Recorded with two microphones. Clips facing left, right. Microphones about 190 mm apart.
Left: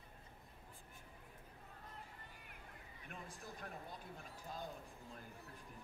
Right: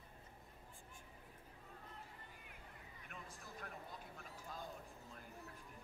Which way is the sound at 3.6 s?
30° left (ahead or behind).